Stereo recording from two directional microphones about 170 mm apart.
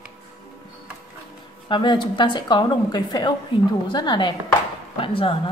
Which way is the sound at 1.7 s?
25° left (ahead or behind).